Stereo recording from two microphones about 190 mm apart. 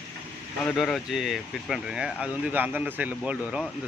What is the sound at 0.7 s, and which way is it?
Speech, centre (ahead or behind).